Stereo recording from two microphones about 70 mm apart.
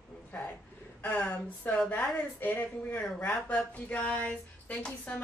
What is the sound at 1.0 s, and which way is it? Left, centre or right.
Speech, centre.